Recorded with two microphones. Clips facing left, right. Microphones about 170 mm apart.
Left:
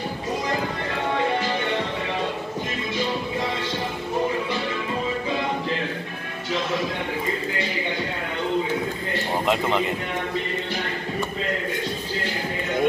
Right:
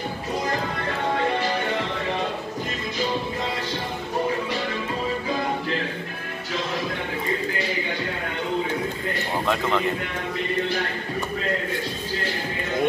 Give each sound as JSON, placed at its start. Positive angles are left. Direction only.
{"t": 9.5, "sound": "speech", "side_deg": 20}